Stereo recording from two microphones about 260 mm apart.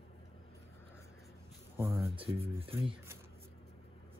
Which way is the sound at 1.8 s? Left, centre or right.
Centre.